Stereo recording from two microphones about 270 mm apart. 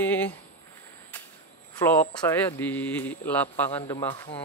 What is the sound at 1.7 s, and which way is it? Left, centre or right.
Speech, centre.